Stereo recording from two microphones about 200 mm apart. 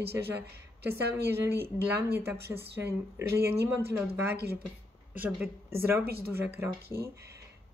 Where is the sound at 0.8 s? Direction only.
10° right (ahead or behind).